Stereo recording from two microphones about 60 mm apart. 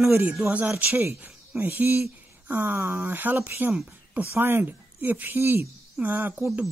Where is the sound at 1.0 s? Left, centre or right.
Right.